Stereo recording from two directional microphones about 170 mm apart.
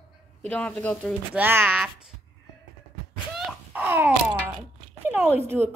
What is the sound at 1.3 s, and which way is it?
Speech, 10° right (ahead or behind).